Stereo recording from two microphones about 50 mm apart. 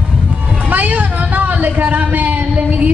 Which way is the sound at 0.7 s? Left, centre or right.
Right.